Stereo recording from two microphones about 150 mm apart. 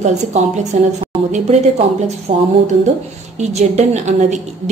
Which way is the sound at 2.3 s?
40° right (ahead or behind).